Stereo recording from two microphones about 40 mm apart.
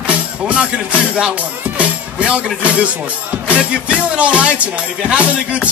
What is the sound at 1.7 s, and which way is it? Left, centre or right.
Speech, right.